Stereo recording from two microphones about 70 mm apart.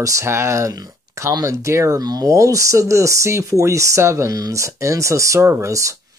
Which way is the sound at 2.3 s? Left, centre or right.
Right.